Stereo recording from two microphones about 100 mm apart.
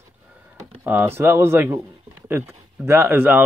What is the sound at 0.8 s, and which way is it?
Speech, 20° right (ahead or behind).